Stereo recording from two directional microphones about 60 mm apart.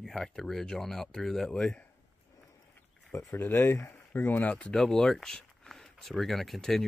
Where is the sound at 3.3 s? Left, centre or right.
Left.